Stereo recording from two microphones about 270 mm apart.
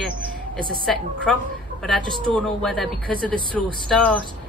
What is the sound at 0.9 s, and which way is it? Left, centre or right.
Speech, centre.